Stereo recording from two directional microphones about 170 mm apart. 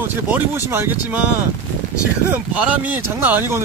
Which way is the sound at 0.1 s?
10° right (ahead or behind).